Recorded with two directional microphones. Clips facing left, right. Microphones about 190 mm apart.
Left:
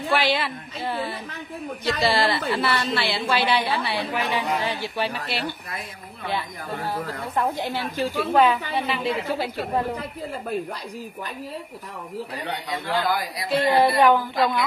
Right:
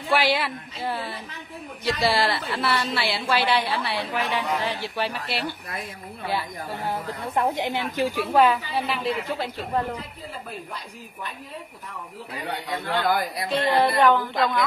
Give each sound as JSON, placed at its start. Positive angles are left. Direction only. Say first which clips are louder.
{"t": 0.1, "sound": "a woman's voice", "louder": "right 1 dB", "side_deg": -10}
{"t": 7.3, "sound": "a woman's voice", "louder": "right 1 dB", "side_deg": -20}
{"t": 8.4, "sound": "a woman's voice", "louder": "even", "side_deg": 0}
{"t": 12.4, "sound": "a woman's voice", "louder": "right 2 dB", "side_deg": 0}
{"t": 13.5, "sound": "speech", "louder": "left 3 dB", "side_deg": 10}